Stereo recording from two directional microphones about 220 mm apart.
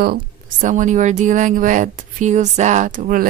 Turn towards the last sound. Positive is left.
turn(degrees=-40)  # may be behind; listen again after turning